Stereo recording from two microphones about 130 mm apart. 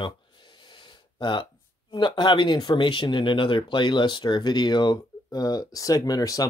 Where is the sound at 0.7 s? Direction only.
35° left (ahead or behind).